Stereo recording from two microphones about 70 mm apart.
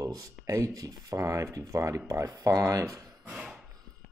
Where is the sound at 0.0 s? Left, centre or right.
Right.